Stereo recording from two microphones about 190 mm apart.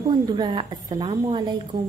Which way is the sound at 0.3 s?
25° right (ahead or behind).